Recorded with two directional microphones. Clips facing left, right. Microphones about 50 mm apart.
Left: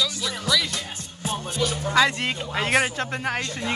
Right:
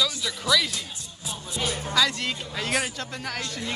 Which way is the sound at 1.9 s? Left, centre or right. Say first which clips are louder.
Left 5 dB; left.